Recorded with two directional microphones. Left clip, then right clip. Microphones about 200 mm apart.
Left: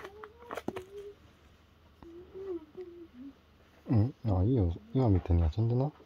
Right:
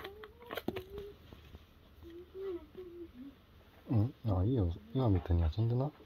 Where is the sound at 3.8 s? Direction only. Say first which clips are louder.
Left 4 dB; 50° left (ahead or behind).